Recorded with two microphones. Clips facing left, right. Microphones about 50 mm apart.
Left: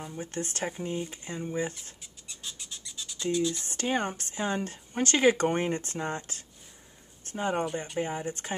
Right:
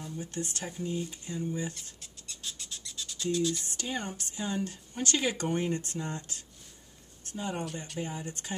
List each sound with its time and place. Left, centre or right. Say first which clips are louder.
0.0 s speech: left 2 dB; left
2.0 s a sound: even; centre
3.3 s speech: left 1 dB; centre
3.6 s speech: left 6 dB; left
7.6 s speech: left 6 dB; left